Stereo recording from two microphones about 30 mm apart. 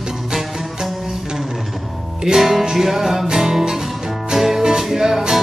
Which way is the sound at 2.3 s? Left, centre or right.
Centre.